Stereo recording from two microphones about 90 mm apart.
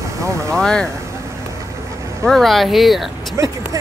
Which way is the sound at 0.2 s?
35° right (ahead or behind).